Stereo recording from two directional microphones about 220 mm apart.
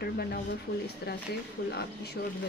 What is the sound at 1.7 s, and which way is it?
Speech, 50° left (ahead or behind).